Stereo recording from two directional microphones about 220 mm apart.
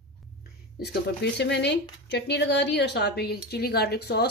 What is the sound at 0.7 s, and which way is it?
A woman's voice, 50° left (ahead or behind).